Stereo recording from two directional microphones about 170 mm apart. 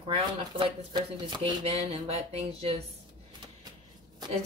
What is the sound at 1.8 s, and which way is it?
Speech, 35° right (ahead or behind).